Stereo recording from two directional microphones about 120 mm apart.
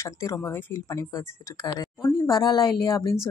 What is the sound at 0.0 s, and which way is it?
Speech, 25° left (ahead or behind).